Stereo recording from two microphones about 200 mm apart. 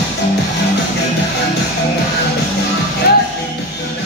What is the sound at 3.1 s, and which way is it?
Music, 50° left (ahead or behind).